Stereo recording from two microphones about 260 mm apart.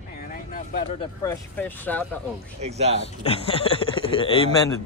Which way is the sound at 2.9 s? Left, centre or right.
Left.